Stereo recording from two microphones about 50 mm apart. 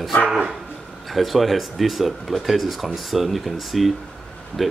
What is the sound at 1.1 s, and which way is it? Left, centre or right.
Speech, centre.